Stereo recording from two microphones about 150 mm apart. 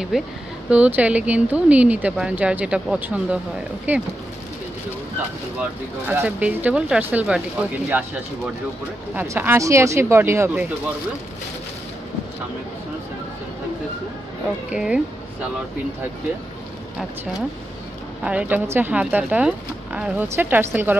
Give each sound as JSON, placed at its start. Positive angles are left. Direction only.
{"t": 0.1, "sound": "speech", "side_deg": -5}
{"t": 6.0, "sound": "speech", "side_deg": -10}
{"t": 14.7, "sound": "speech", "side_deg": -5}
{"t": 18.2, "sound": "speech", "side_deg": -10}